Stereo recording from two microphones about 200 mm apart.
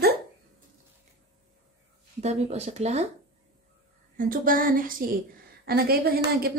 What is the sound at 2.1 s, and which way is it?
Speech, 35° right (ahead or behind).